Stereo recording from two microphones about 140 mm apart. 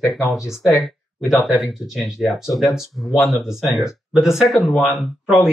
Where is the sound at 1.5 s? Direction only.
Centre (ahead or behind).